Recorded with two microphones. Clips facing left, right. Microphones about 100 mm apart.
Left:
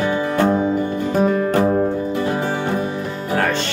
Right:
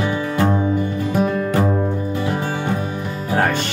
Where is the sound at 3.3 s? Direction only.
15° right (ahead or behind).